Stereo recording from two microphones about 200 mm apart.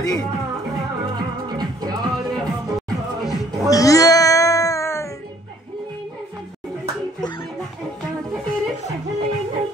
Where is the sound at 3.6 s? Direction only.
15° left (ahead or behind).